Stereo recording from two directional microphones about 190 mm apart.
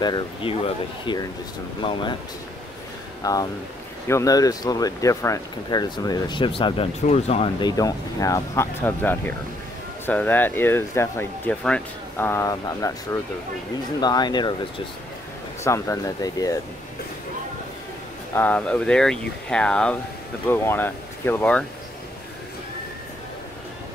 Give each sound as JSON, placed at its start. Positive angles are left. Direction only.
{"t": 0.0, "sound": "speech", "side_deg": 25}
{"t": 3.2, "sound": "speech", "side_deg": 20}
{"t": 15.6, "sound": "speech", "side_deg": 15}
{"t": 18.3, "sound": "speech", "side_deg": 10}